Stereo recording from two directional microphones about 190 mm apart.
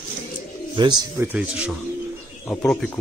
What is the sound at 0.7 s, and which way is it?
Speech, 25° right (ahead or behind).